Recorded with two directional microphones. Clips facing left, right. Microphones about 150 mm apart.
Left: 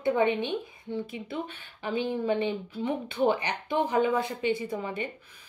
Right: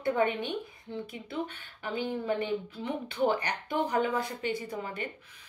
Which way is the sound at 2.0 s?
25° left (ahead or behind).